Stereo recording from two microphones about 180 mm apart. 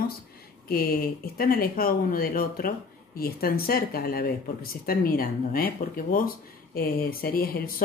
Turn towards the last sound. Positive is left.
turn(degrees=55)  # may be behind; listen again after turning